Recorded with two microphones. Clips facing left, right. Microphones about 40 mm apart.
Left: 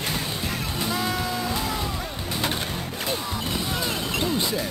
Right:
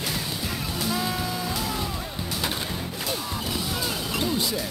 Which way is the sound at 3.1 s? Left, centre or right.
Centre.